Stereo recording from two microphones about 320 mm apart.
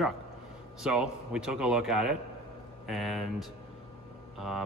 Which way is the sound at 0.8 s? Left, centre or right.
Centre.